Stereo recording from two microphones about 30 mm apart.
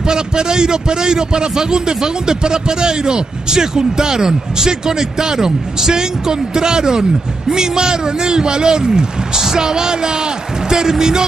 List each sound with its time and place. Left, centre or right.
0.1 s a man's voice: right